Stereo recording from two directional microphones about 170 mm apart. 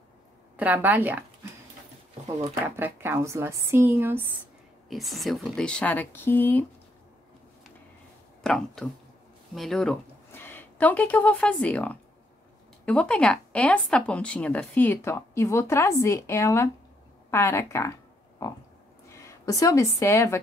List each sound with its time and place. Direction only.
0.6 s speech: 10° right (ahead or behind)
2.6 s speech: 15° right (ahead or behind)
4.8 s speech: centre (ahead or behind)
8.4 s a woman's voice: 5° left (ahead or behind)
18.4 s pig: 15° left (ahead or behind)
19.0 s speech: 15° left (ahead or behind)